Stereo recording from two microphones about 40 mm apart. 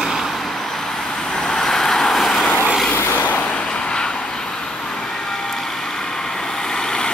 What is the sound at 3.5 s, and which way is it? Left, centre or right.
Vehicle, left.